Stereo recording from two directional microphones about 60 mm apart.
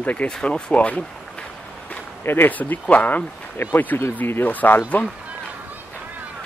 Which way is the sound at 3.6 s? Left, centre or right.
Left.